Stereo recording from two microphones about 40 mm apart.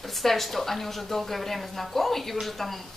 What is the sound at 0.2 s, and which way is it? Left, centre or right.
A woman's voice, centre.